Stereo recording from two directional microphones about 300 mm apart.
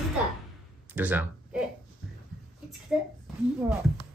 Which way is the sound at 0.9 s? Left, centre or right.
Centre.